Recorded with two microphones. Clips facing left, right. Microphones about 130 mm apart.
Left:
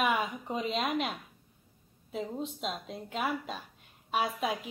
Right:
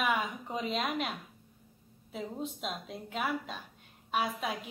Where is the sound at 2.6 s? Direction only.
Centre (ahead or behind).